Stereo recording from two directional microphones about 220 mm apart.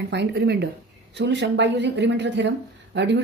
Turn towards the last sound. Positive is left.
turn(degrees=-50)  # may be behind; listen again after turning